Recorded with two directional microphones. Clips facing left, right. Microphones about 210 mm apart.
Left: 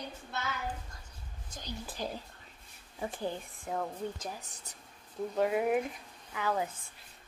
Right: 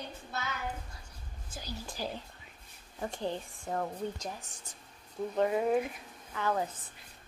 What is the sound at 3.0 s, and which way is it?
Speech, 5° left (ahead or behind).